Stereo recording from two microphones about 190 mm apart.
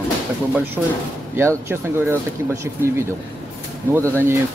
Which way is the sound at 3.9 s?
10° right (ahead or behind).